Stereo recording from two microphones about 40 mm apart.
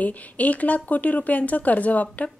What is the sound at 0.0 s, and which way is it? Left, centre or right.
A woman's voice, left.